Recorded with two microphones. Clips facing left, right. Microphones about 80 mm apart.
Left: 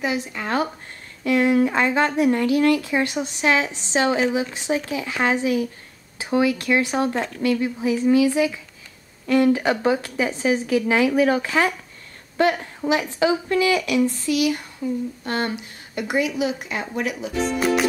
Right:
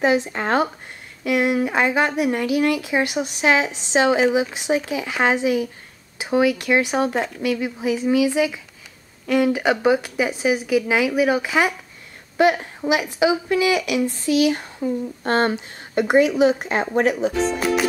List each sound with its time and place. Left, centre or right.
0.0 s a woman's voice: right
1.2 s a woman's voice: centre; by 17.3 s right